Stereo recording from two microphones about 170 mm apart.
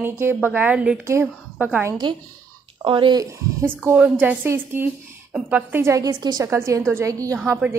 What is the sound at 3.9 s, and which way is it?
A woman's voice, 5° right (ahead or behind).